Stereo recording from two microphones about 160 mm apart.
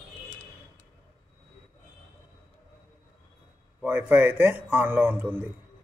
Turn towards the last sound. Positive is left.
turn(degrees=-10)  # may be behind; listen again after turning